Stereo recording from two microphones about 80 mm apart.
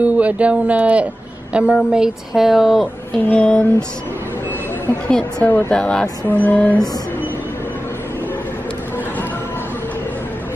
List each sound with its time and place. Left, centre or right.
0.0 s speech: centre
3.3 s a woman's voice: centre
5.0 s a woman's voice: centre
6.2 s a sound: left